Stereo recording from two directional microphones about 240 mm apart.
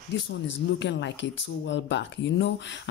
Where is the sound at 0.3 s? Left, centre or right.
Left.